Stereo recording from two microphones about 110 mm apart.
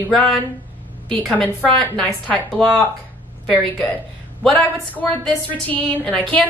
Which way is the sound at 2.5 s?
Centre (ahead or behind).